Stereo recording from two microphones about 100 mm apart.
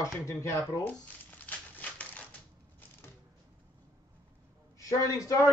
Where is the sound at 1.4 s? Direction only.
15° left (ahead or behind).